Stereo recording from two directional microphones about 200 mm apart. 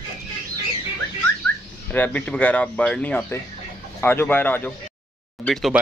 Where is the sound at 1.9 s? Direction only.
10° left (ahead or behind).